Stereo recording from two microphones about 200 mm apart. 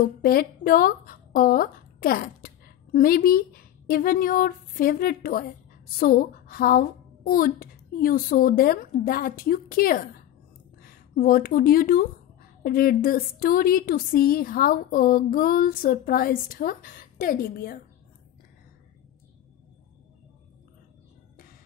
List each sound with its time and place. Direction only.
0.0 s a woman's voice: 50° left (ahead or behind)